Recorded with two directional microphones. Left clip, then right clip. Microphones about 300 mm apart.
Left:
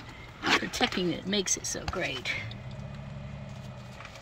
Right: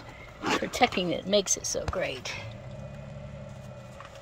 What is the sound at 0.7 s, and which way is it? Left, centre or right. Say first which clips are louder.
Speech: right 4 dB; centre.